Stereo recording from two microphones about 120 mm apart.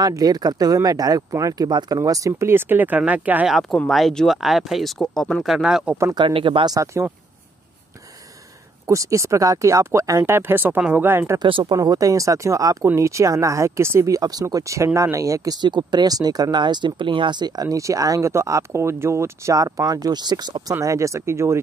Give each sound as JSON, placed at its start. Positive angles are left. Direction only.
{"t": 0.0, "sound": "speech", "side_deg": -35}
{"t": 3.9, "sound": "speech", "side_deg": 5}
{"t": 6.1, "sound": "speech", "side_deg": -45}
{"t": 6.7, "sound": "speech", "side_deg": -25}
{"t": 8.8, "sound": "speech", "side_deg": -25}
{"t": 11.3, "sound": "speech", "side_deg": -45}
{"t": 11.8, "sound": "speech", "side_deg": -30}